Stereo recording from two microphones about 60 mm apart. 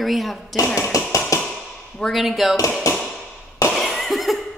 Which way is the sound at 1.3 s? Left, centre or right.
Left.